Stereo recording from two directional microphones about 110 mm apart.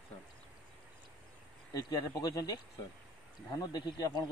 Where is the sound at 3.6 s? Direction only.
40° left (ahead or behind).